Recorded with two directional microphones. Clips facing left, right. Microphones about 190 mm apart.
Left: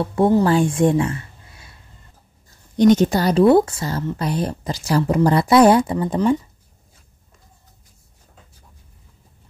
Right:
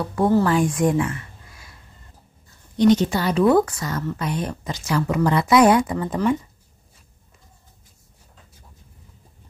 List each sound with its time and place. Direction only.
0.0 s speech: 25° left (ahead or behind)
2.8 s speech: 45° left (ahead or behind); by 6.3 s 25° left (ahead or behind)